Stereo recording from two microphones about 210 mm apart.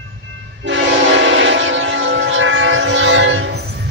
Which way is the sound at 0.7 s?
60° right (ahead or behind).